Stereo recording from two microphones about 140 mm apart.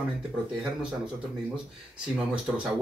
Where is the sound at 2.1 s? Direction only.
5° right (ahead or behind).